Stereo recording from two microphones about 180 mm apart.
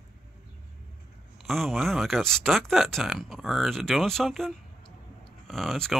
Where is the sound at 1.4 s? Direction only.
Centre (ahead or behind).